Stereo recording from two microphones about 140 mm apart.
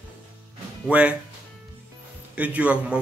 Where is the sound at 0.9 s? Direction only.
10° right (ahead or behind).